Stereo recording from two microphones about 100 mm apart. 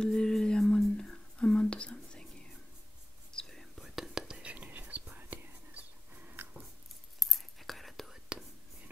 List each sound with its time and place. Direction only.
0.0 s a sound: 5° left (ahead or behind)
3.3 s whispering: 5° left (ahead or behind); by 6.4 s 20° right (ahead or behind)
7.2 s whispering: centre (ahead or behind)